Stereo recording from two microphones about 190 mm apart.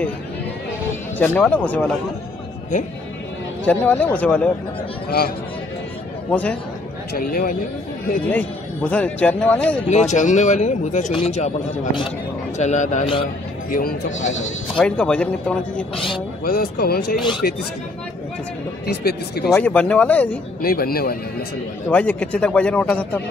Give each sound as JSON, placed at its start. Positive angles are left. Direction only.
{"t": 1.1, "sound": "speech", "side_deg": 5}
{"t": 2.7, "sound": "a man's voice", "side_deg": 40}
{"t": 3.6, "sound": "speech", "side_deg": 10}
{"t": 7.2, "sound": "speech", "side_deg": 50}
{"t": 8.9, "sound": "speech", "side_deg": 5}
{"t": 9.8, "sound": "a man's voice", "side_deg": 40}
{"t": 13.7, "sound": "speech", "side_deg": 50}
{"t": 14.2, "sound": "speech", "side_deg": 85}
{"t": 14.8, "sound": "speech", "side_deg": 5}
{"t": 16.4, "sound": "speech", "side_deg": 55}
{"t": 18.9, "sound": "speech", "side_deg": 60}
{"t": 19.4, "sound": "speech", "side_deg": 5}
{"t": 20.6, "sound": "speech", "side_deg": 50}
{"t": 21.8, "sound": "speech", "side_deg": 5}